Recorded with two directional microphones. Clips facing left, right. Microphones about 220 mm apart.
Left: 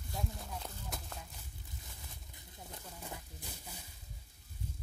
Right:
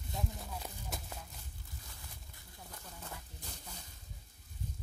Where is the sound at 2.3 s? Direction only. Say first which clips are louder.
Left 3 dB; 20° left (ahead or behind).